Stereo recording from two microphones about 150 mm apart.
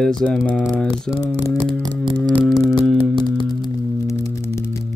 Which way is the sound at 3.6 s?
20° left (ahead or behind).